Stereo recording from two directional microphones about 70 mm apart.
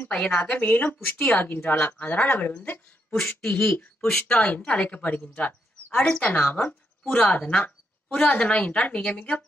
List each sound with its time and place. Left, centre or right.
0.1 s speech: centre
0.4 s speech: left
3.2 s speech: centre